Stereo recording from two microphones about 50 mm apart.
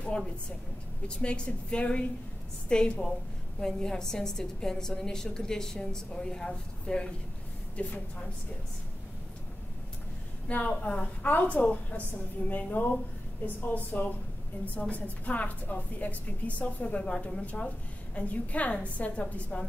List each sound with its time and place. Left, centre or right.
1.0 s a woman's voice: left
10.5 s a woman's voice: left